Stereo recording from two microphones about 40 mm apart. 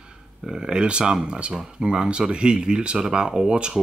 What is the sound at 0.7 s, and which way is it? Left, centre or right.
Speech, right.